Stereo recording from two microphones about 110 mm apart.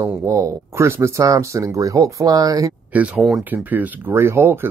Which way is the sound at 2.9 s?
15° right (ahead or behind).